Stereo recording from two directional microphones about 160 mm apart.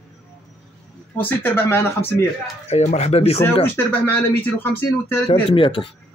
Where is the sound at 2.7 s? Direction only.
45° left (ahead or behind).